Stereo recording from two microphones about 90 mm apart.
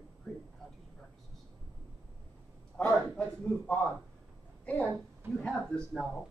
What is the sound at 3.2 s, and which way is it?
Speech, 15° left (ahead or behind).